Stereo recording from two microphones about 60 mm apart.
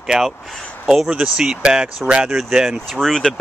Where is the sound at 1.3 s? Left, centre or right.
Centre.